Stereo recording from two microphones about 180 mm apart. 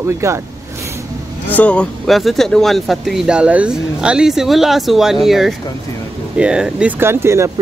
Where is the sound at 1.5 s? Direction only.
5° left (ahead or behind).